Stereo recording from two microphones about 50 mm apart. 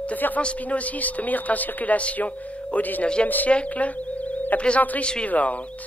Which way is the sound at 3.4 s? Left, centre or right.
Left.